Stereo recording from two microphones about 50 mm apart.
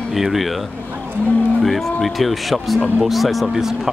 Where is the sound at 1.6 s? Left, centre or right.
Centre.